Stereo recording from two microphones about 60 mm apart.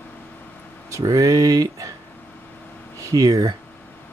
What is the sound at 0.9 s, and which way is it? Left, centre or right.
Speech, right.